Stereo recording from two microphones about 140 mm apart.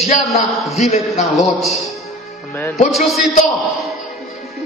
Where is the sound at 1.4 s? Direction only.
Centre (ahead or behind).